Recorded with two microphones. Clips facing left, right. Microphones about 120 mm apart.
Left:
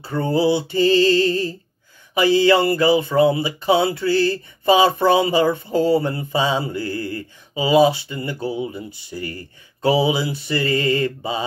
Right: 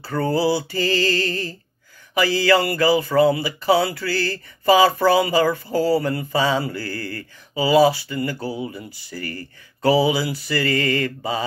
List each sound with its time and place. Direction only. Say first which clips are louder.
0.0 s speech: left 1 dB; 20° left (ahead or behind)